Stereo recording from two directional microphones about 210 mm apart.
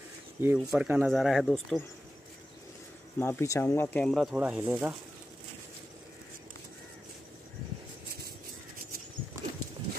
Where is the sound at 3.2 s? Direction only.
10° left (ahead or behind); by 4.9 s 10° right (ahead or behind).